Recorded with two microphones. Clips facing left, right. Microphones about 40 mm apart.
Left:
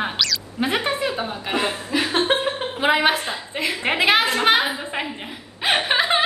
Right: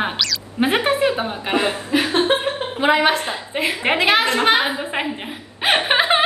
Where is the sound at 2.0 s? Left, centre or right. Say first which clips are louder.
Right 2 dB; centre.